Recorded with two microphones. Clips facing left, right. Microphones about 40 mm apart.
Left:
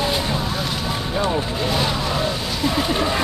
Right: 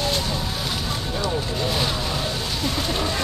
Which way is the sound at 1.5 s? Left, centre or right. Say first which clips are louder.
Left 3 dB; centre.